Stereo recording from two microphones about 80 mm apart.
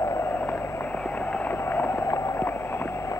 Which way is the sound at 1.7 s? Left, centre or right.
Left.